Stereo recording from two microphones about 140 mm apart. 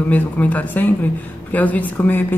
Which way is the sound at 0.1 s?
10° left (ahead or behind).